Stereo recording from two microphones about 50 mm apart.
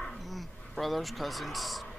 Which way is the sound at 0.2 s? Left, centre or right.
Centre.